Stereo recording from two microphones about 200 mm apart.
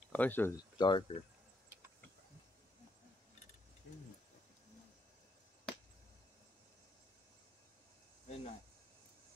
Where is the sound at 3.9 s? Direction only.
60° left (ahead or behind).